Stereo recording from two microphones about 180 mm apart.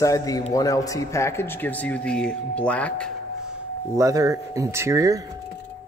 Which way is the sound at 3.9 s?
20° right (ahead or behind).